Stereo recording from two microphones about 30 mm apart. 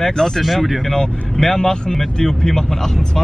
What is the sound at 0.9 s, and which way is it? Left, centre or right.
Speech, centre.